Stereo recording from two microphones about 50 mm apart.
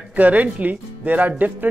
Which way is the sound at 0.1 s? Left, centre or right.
Right.